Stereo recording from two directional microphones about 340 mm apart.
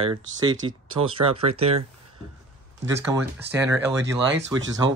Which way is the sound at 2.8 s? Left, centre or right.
Centre.